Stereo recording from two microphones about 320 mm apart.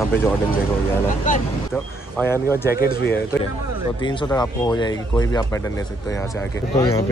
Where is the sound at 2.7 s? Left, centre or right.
Left.